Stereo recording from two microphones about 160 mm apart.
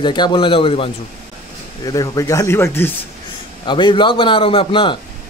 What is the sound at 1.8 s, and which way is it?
Speech, 20° left (ahead or behind).